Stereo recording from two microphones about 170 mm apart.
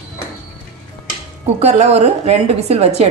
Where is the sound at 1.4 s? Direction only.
40° right (ahead or behind).